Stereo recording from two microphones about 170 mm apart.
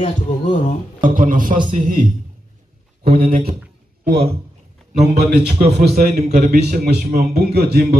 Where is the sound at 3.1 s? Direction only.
55° right (ahead or behind).